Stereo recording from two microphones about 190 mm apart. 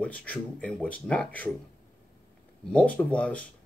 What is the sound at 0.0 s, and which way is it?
Speech, 5° left (ahead or behind).